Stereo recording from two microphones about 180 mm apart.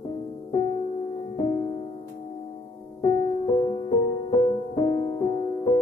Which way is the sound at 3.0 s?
35° left (ahead or behind).